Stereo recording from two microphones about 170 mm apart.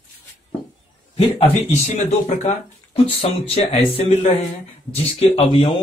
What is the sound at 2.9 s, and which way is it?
Speech, 35° left (ahead or behind).